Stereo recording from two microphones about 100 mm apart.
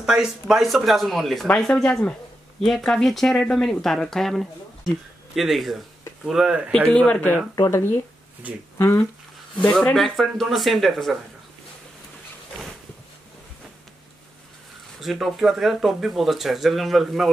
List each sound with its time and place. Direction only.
0.0 s speech: 5° right (ahead or behind)
6.9 s speech: 10° left (ahead or behind); by 9.0 s 25° left (ahead or behind)
9.6 s speech: 15° left (ahead or behind)
9.9 s speech: centre (ahead or behind)
15.0 s speech: centre (ahead or behind)